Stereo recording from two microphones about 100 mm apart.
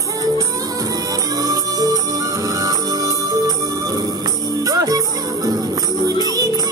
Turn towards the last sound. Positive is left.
turn(degrees=-35)  # may be behind; listen again after turning